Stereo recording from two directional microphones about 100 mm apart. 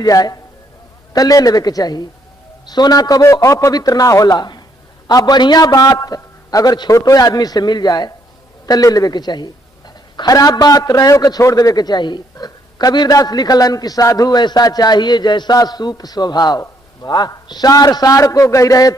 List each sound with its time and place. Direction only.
0.0 s a man's voice: 40° left (ahead or behind)